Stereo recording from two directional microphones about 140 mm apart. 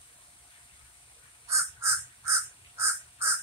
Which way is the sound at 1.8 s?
20° right (ahead or behind).